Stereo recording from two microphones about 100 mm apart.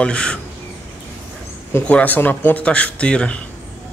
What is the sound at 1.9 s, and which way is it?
Speech, 15° left (ahead or behind).